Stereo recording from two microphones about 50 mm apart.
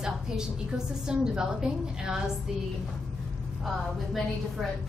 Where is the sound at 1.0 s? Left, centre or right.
Centre.